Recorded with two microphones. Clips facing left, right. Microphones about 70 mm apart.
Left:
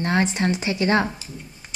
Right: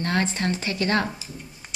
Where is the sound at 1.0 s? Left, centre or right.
Centre.